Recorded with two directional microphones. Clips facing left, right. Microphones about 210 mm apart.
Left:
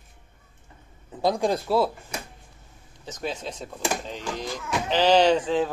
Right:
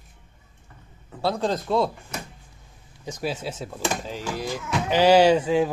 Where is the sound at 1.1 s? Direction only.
15° left (ahead or behind).